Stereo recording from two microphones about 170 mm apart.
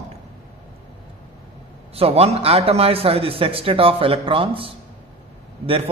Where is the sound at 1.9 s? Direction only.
35° right (ahead or behind).